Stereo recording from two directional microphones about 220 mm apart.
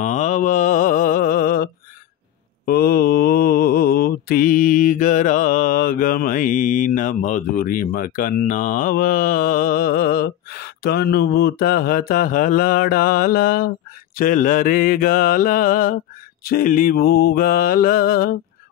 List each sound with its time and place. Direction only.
0.0 s mantra: 35° left (ahead or behind)